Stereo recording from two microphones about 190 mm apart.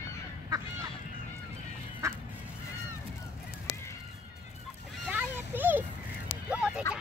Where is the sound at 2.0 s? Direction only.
15° right (ahead or behind).